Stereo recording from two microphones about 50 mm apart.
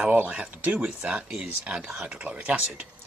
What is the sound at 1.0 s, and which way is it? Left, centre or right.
Speech, right.